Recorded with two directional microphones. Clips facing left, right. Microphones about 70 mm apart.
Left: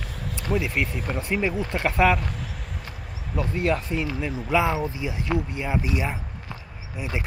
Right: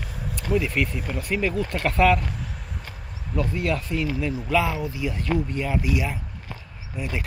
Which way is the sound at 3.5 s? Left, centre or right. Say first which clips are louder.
Left 5 dB; left.